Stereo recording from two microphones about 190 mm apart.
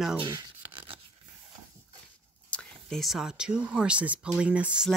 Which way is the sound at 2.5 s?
5° left (ahead or behind).